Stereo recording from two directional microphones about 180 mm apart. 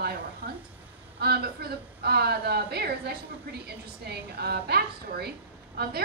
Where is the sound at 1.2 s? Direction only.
60° right (ahead or behind).